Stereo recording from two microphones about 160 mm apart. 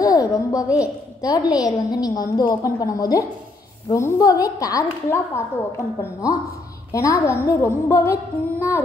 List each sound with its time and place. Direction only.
0.0 s a sound: 20° left (ahead or behind)
0.7 s a woman's voice: 20° left (ahead or behind)
1.6 s music: 25° left (ahead or behind)
6.9 s music: 20° left (ahead or behind)